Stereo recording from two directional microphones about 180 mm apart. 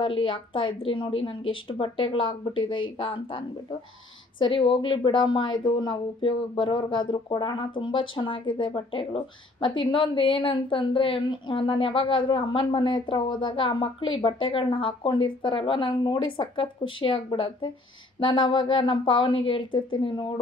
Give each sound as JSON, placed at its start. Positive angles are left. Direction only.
{"t": 0.0, "sound": "a woman's voice", "side_deg": 30}